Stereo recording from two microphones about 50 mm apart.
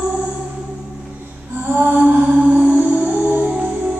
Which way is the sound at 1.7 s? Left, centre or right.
Right.